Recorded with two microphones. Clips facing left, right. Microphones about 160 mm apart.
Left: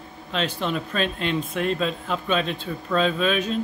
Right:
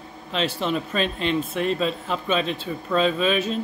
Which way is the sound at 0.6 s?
5° right (ahead or behind).